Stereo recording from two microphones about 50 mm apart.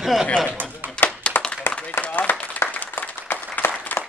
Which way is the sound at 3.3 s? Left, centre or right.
Left.